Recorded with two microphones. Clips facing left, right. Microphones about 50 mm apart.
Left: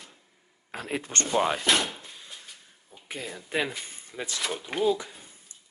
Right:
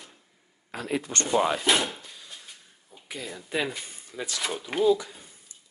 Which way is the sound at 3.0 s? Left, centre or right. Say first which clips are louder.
Left 1 dB; left.